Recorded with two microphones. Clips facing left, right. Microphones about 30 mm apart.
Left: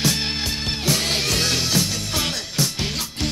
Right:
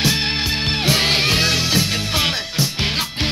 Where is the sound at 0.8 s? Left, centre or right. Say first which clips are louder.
Right 5 dB; right.